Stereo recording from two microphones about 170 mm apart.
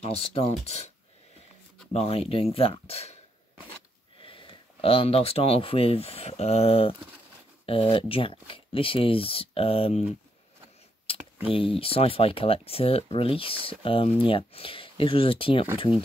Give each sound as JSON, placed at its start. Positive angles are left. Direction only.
{"t": 0.0, "sound": "speech", "side_deg": 35}
{"t": 4.2, "sound": "speech", "side_deg": 30}
{"t": 11.1, "sound": "a sound", "side_deg": 35}
{"t": 11.5, "sound": "speech", "side_deg": 35}